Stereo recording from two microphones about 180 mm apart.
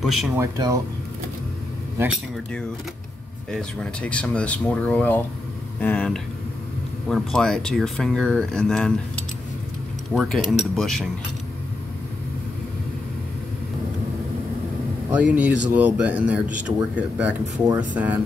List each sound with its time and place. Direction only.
0.0 s speech: centre (ahead or behind)
0.4 s speech: 20° right (ahead or behind)
3.5 s speech: 5° left (ahead or behind)
10.1 s speech: centre (ahead or behind)
15.0 s speech: 5° right (ahead or behind)